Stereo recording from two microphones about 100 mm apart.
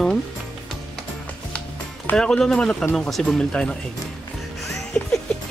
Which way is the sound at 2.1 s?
5° left (ahead or behind).